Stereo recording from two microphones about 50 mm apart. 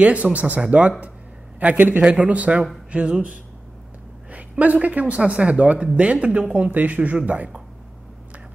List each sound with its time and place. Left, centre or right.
0.0 s a man's voice: right